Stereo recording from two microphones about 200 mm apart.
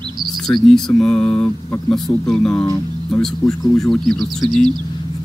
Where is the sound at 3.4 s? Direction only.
15° left (ahead or behind).